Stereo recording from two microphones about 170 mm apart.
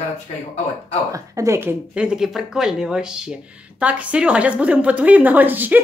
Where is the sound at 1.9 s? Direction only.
5° right (ahead or behind).